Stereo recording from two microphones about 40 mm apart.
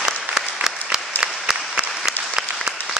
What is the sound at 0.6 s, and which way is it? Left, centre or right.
Applause, centre.